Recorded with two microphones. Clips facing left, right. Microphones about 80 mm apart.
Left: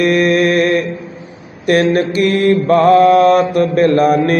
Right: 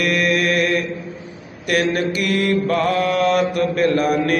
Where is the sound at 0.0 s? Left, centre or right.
Left.